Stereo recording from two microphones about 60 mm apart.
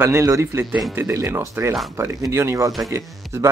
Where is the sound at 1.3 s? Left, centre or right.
Right.